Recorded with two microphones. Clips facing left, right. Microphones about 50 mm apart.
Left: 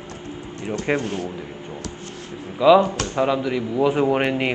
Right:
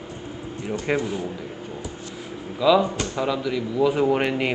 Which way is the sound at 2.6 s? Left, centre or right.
Left.